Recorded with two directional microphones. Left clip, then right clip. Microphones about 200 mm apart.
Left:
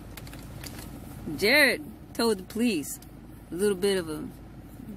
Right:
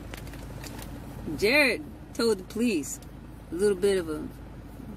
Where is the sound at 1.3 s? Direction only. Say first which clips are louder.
Left 1 dB; 35° left (ahead or behind).